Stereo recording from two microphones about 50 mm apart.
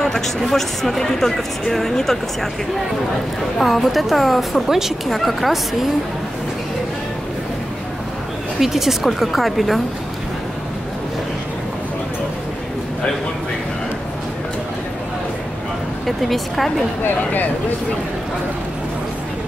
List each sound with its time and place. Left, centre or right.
0.4 s speech: centre
3.5 s speech: centre
8.5 s speech: centre
16.1 s speech: centre
17.0 s speech: left